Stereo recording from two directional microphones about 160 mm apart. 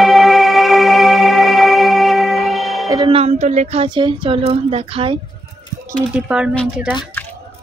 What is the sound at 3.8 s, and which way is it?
Speech, 30° right (ahead or behind).